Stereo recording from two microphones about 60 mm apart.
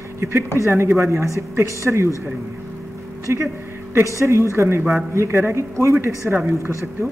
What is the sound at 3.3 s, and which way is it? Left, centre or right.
A woman's voice, right.